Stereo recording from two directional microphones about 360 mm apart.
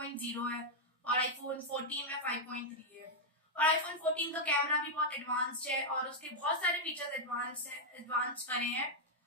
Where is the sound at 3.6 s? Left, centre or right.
Centre.